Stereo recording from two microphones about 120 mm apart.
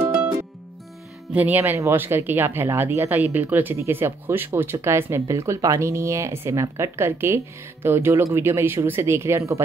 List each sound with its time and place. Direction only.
1.3 s speech: 15° right (ahead or behind)